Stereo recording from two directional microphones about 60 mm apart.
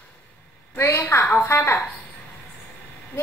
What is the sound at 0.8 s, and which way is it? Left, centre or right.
A woman's voice, left.